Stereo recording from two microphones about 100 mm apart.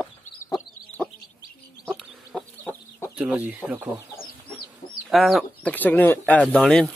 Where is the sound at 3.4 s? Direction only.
10° right (ahead or behind).